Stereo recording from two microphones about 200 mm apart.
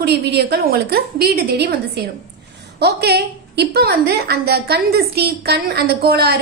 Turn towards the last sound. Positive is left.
turn(degrees=-50)  # may be behind; listen again after turning